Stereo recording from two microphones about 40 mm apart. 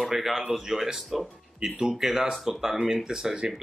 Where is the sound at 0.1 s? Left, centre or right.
Centre.